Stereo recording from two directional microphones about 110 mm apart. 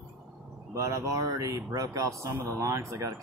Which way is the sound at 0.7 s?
30° right (ahead or behind).